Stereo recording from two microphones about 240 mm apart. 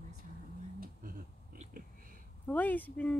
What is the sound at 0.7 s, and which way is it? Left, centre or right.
Speech, right.